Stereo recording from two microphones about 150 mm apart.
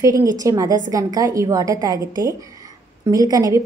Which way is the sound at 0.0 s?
20° right (ahead or behind).